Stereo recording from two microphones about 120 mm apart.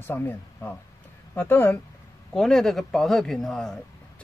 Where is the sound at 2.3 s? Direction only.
5° left (ahead or behind).